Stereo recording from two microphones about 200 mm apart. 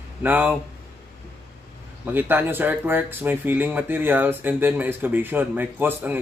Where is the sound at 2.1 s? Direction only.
10° right (ahead or behind).